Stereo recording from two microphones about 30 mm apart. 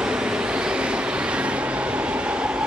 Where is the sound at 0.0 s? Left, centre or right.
Right.